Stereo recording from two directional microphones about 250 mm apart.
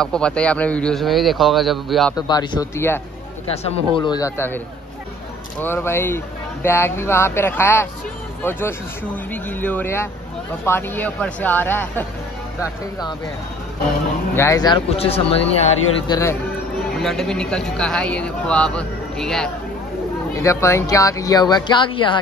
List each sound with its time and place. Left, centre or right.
0.0 s speech: centre
2.1 s speech: centre
3.6 s speech: left
5.6 s speech: centre
14.3 s speech: centre
16.9 s speech: centre